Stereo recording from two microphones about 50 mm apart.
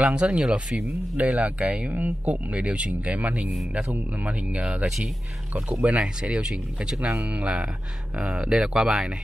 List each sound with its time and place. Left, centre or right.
0.0 s speech: centre
1.1 s speech: right
2.0 s speech: right
5.9 s speech: right
7.0 s speech: right
7.4 s speech: centre
8.5 s speech: centre